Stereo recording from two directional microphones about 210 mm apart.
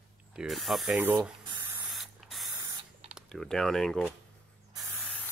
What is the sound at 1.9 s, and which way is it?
Spray, centre (ahead or behind).